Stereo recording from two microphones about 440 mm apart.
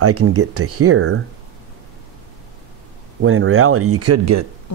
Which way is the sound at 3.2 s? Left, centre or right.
Right.